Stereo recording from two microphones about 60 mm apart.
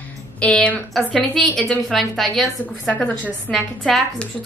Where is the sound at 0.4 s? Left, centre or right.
Centre.